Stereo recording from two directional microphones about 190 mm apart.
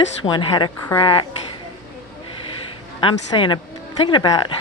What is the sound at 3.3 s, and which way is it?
Speech, 25° left (ahead or behind).